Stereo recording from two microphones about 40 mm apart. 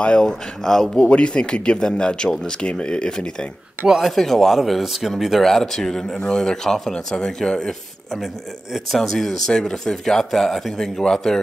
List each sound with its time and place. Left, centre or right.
0.0 s speech: centre
0.9 s speech: left
4.0 s speech: centre
5.4 s speech: centre
9.5 s speech: centre